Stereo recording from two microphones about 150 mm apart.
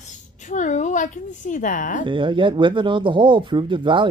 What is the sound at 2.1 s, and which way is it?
Speech, 35° right (ahead or behind).